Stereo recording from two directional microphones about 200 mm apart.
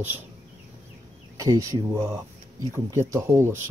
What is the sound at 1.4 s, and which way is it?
Speech, 15° right (ahead or behind).